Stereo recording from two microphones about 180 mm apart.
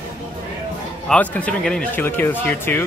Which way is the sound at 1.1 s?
5° left (ahead or behind).